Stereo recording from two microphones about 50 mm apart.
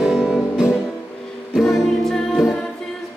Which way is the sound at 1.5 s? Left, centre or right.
Centre.